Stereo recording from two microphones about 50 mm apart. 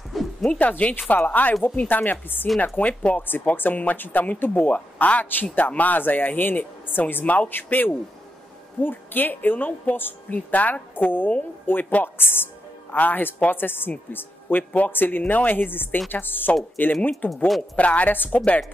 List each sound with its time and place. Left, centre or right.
0.1 s owl: centre
0.5 s speech: left
17.7 s speech: left